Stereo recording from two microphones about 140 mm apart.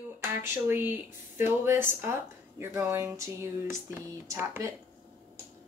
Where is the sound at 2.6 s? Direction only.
20° right (ahead or behind).